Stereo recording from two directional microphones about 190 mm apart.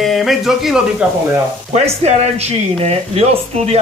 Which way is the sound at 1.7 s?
35° right (ahead or behind).